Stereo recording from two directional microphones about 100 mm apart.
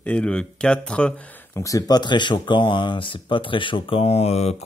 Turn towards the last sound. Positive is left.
turn(degrees=90)